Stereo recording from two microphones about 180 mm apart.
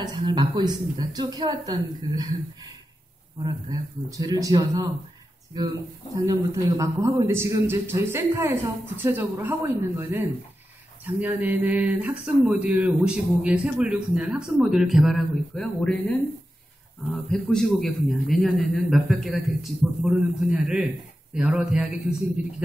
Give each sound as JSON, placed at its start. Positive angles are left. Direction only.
{"t": 0.0, "sound": "a woman's voice", "side_deg": -25}
{"t": 3.7, "sound": "a woman's voice", "side_deg": -20}
{"t": 6.1, "sound": "a man's voice", "side_deg": -20}